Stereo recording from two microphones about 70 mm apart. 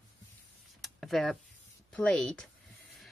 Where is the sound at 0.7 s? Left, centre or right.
Centre.